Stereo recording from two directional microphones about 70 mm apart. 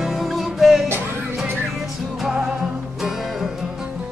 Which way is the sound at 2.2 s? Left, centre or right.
Centre.